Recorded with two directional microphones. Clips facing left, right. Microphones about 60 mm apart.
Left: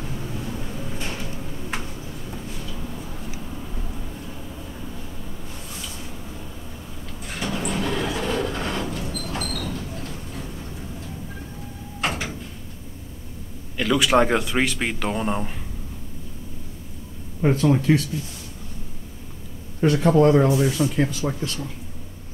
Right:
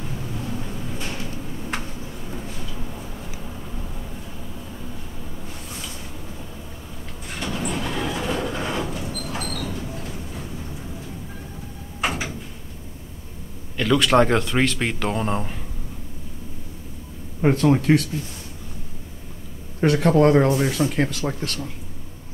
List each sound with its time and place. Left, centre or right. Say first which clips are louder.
7.2 s vehicle: left 1 dB; centre
12.0 s door: right 1 dB; centre
13.7 s speech: right 1 dB; centre
17.6 s speech: right 2 dB; right
19.8 s speech: even; right